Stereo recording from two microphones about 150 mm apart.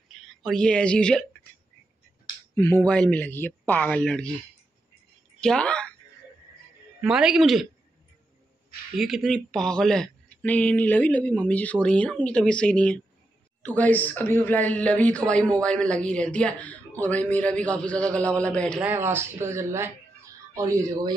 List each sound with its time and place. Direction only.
0.1 s speech: 5° left (ahead or behind)
2.5 s a woman's voice: 15° left (ahead or behind)
5.4 s a sound: 5° left (ahead or behind)
7.0 s a man's voice: 5° right (ahead or behind)
8.9 s a woman's voice: centre (ahead or behind)
18.8 s speech: 15° right (ahead or behind)